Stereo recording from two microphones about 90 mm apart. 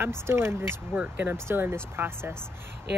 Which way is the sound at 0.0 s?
30° right (ahead or behind).